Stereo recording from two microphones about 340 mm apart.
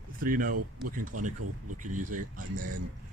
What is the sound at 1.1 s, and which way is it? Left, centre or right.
Speech, right.